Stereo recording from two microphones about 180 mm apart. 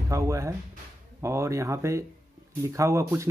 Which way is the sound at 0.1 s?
15° right (ahead or behind).